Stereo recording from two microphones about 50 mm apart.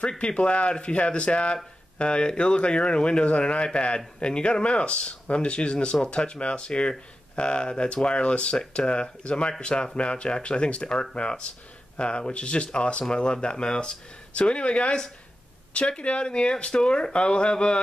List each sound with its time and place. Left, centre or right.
0.2 s speech: left